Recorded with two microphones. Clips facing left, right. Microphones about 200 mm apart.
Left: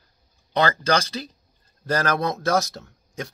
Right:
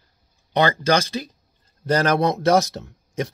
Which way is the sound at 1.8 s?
20° right (ahead or behind).